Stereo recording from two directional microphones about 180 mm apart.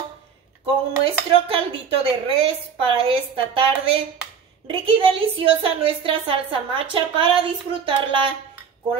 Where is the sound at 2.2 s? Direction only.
30° right (ahead or behind).